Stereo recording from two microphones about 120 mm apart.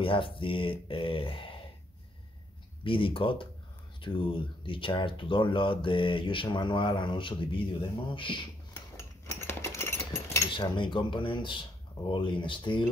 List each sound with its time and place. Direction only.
0.0 s speech: 45° left (ahead or behind)
2.8 s speech: 45° left (ahead or behind)
8.9 s a sound: 20° left (ahead or behind)
10.5 s speech: 40° left (ahead or behind)